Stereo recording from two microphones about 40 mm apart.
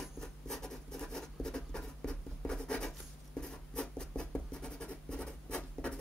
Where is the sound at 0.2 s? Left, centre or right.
Centre.